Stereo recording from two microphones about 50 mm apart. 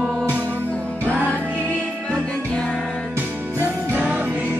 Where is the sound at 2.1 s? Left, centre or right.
Centre.